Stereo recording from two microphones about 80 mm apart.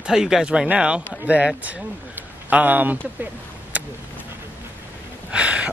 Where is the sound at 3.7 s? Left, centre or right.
Centre.